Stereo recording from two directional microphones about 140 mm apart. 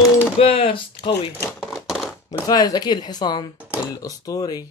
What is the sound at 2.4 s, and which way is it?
Speech, 25° left (ahead or behind).